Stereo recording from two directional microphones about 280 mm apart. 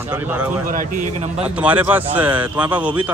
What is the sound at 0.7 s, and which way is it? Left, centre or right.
Speech, right.